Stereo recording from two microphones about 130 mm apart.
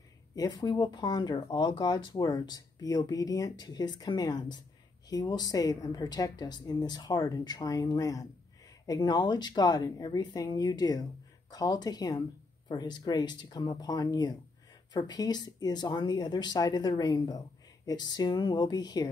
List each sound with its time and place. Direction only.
0.4 s speech: 35° left (ahead or behind)